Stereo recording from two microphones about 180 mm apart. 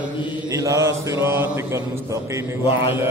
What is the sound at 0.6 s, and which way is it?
Mantra, 15° right (ahead or behind).